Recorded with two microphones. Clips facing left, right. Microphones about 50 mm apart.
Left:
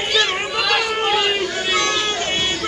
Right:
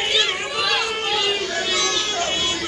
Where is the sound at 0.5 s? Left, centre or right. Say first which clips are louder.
Left 4 dB; left.